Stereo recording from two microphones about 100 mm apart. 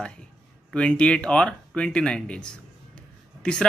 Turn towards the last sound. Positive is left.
turn(degrees=10)  # may be behind; listen again after turning